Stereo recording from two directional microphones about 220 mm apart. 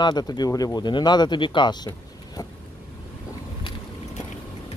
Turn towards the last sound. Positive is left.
turn(degrees=20)  # may be behind; listen again after turning